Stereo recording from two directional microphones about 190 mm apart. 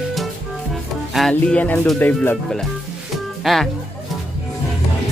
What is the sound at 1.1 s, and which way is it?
Speech, 5° left (ahead or behind).